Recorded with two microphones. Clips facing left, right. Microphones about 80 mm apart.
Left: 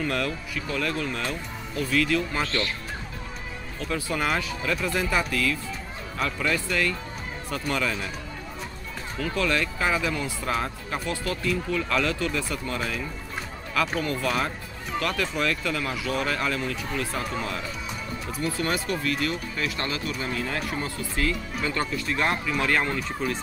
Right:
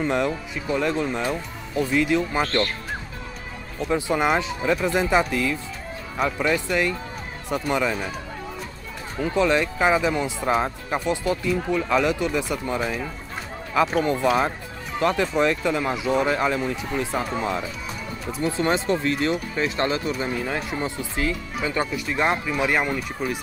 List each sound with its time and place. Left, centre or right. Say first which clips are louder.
0.0 s speech: right 5 dB; right
3.8 s speech: right 6 dB; right
9.2 s speech: right 5 dB; right